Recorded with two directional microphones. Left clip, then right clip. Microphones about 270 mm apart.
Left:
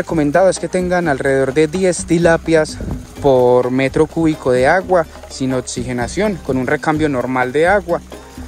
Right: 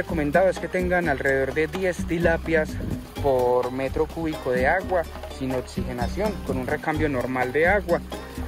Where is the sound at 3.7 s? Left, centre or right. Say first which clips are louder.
Left 11 dB; left.